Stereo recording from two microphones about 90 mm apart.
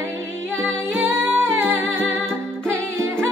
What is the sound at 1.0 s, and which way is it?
Humming, 25° right (ahead or behind).